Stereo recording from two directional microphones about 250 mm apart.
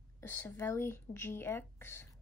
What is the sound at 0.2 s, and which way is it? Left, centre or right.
A woman's voice, centre.